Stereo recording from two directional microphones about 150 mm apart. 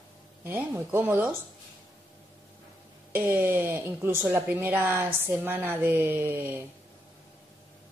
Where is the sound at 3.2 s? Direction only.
15° right (ahead or behind).